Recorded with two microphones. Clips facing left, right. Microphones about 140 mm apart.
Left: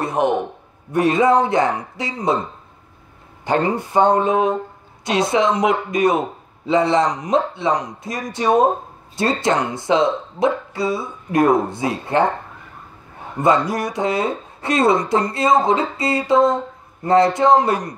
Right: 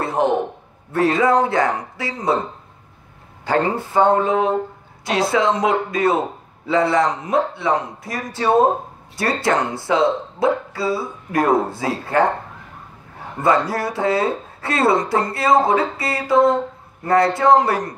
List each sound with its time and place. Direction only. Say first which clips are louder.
0.0 s a sound: even; 20° left (ahead or behind)
0.9 s speech: left 1 dB; 20° left (ahead or behind)
3.4 s a man's voice: even; 20° left (ahead or behind)
13.7 s a man's voice: right 1 dB; 15° left (ahead or behind)